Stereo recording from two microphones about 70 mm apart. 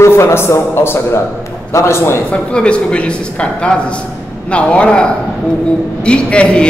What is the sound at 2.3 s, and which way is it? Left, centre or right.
A man's voice, centre.